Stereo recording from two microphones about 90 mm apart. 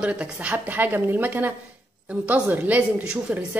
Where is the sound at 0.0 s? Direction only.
15° right (ahead or behind).